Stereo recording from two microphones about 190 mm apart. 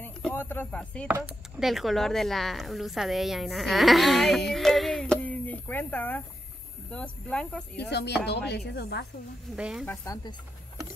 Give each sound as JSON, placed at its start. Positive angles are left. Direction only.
{"t": 0.0, "sound": "chop", "side_deg": 10}
{"t": 1.0, "sound": "speech", "side_deg": -5}
{"t": 7.9, "sound": "speech", "side_deg": 60}
{"t": 9.6, "sound": "speech", "side_deg": -5}
{"t": 9.8, "sound": "speech", "side_deg": 20}